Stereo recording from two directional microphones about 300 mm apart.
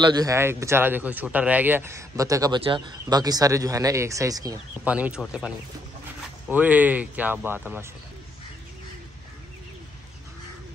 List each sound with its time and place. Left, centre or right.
0.0 s speech: centre
6.5 s speech: centre